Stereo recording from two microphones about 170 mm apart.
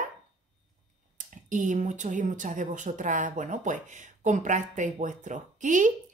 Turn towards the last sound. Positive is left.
turn(degrees=-45)  # may be behind; listen again after turning